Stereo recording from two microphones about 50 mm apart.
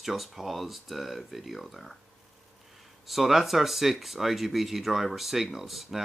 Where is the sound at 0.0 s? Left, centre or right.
Centre.